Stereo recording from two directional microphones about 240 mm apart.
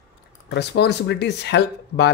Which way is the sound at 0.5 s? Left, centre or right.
Left.